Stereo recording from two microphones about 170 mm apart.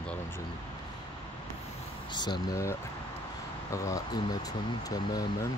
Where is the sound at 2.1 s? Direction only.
25° left (ahead or behind).